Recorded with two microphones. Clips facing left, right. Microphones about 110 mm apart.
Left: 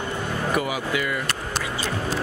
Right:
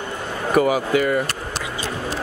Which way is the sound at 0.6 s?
40° right (ahead or behind).